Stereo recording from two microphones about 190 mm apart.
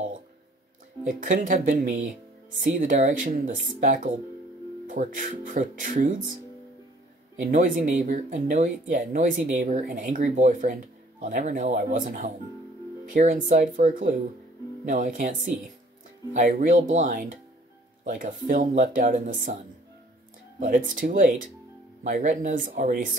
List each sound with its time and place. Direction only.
1.0 s speech: 45° right (ahead or behind)
7.3 s speech: 45° right (ahead or behind)
20.5 s speech: 45° right (ahead or behind)